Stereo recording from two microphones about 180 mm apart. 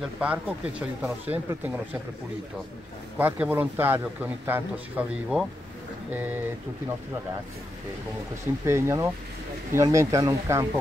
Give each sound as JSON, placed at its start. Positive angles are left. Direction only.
{"t": 0.2, "sound": "a man's voice", "side_deg": -5}
{"t": 3.2, "sound": "a man's voice", "side_deg": -10}
{"t": 8.6, "sound": "a man's voice", "side_deg": -15}